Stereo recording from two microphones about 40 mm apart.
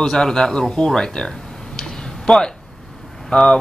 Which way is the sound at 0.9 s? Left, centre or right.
Centre.